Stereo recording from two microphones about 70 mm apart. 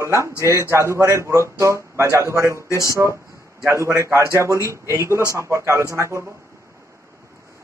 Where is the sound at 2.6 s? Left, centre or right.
Left.